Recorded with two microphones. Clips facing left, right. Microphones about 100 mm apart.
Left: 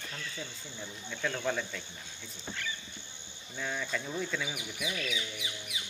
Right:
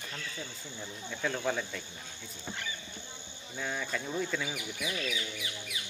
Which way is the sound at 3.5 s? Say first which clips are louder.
Even; 5° right (ahead or behind).